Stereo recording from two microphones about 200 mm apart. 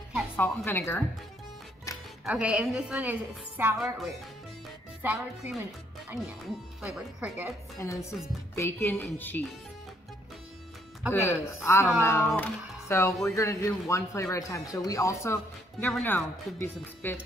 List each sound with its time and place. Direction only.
0.4 s speech: 10° left (ahead or behind)
1.9 s music: 15° left (ahead or behind)
2.2 s a woman's voice: 5° right (ahead or behind)
7.7 s speech: 15° left (ahead or behind)
11.1 s speech: 15° left (ahead or behind)